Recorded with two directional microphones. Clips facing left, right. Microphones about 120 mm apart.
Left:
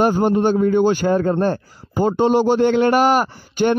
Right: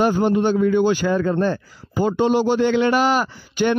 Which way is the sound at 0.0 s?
40° left (ahead or behind).